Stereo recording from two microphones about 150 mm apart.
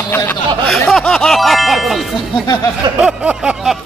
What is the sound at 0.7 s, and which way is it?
Speech, 5° left (ahead or behind).